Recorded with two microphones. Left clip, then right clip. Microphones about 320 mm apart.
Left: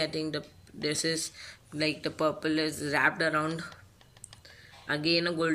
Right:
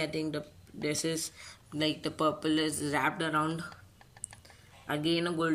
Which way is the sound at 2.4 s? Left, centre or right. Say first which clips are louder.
Left 1 dB; right.